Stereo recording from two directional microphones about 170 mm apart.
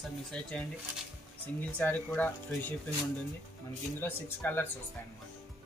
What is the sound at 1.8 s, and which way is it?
Speech, 10° left (ahead or behind).